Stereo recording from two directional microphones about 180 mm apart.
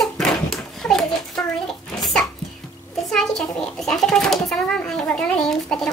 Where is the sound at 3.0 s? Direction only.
Centre (ahead or behind).